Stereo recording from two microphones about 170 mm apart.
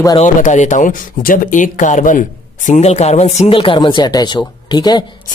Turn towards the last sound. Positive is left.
turn(degrees=25)  # may be behind; listen again after turning